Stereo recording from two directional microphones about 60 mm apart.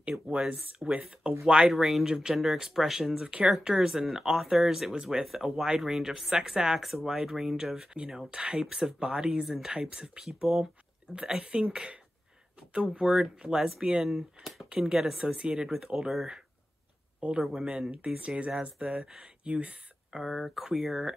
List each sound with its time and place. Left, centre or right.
0.8 s speech: centre
1.2 s speech: centre
1.7 s a man's voice: centre
17.9 s speech: right
20.1 s speech: centre